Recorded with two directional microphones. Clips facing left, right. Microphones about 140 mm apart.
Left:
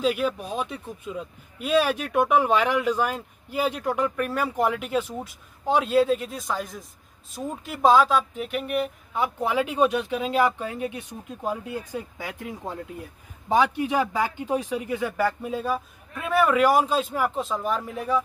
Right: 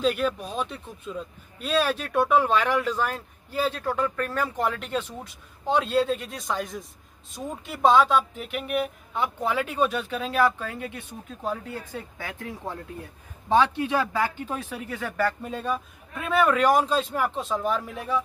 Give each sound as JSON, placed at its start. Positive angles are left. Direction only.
{"t": 0.0, "sound": "speech", "side_deg": 10}